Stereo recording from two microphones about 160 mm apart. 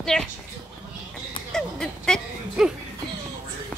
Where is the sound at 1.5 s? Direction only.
5° left (ahead or behind).